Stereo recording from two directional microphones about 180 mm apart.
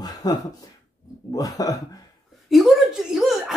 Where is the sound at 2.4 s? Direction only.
Centre (ahead or behind).